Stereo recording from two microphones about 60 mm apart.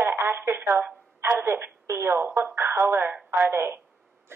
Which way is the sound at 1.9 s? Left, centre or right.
Right.